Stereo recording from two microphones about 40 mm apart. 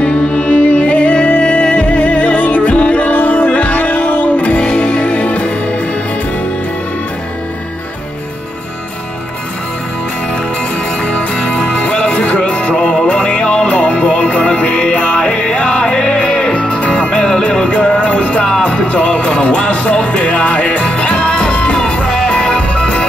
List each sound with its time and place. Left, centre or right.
0.0 s music: left
4.6 s music: left
11.0 s music: left
12.7 s music: centre
15.1 s music: centre
22.6 s music: left